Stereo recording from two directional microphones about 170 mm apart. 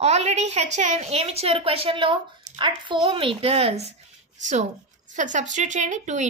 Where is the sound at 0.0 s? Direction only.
40° right (ahead or behind).